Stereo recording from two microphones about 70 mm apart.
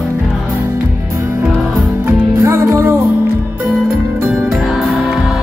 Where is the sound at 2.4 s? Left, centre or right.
Right.